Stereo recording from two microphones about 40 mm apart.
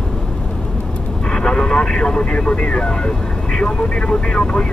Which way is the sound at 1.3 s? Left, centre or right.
Left.